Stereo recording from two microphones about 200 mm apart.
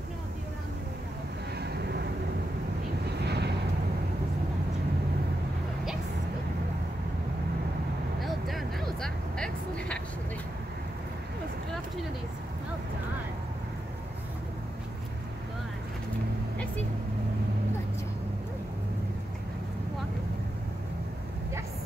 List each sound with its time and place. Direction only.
1.6 s vehicle: 55° right (ahead or behind)
3.3 s vehicle: 55° right (ahead or behind)
8.2 s vehicle: centre (ahead or behind)